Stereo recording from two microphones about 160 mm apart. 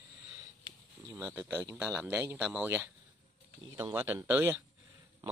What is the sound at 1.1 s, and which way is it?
Speech, 10° right (ahead or behind).